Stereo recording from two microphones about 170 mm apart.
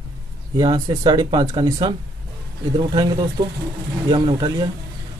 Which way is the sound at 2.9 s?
25° right (ahead or behind).